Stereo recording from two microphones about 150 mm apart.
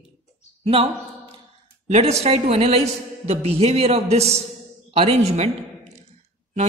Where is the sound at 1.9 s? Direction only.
45° right (ahead or behind).